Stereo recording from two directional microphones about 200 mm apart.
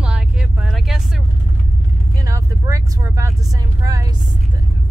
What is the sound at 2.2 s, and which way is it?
Vehicle, 15° right (ahead or behind).